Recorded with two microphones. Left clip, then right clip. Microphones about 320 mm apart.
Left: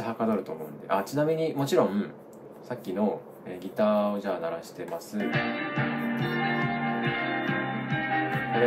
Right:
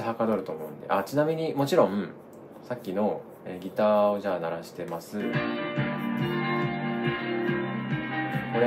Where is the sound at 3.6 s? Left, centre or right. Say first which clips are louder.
Right 3 dB; centre.